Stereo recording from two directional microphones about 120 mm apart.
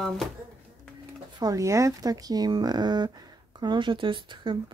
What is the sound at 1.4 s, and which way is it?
Speech, 30° right (ahead or behind).